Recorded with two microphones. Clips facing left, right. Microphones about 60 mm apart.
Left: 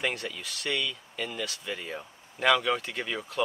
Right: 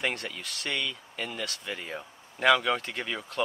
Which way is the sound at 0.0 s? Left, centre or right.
Centre.